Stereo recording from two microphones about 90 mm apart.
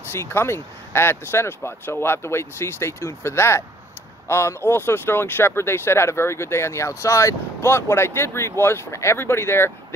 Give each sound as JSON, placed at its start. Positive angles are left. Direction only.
{"t": 0.1, "sound": "speech", "side_deg": 30}